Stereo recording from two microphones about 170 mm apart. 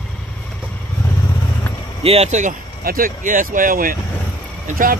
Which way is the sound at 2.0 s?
40° right (ahead or behind).